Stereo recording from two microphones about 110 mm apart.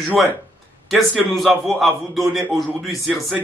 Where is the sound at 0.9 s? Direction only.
5° left (ahead or behind).